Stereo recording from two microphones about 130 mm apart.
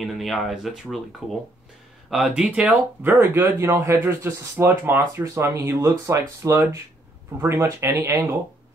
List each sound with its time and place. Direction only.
0.0 s speech: centre (ahead or behind)
2.0 s speech: centre (ahead or behind); by 8.4 s 20° right (ahead or behind)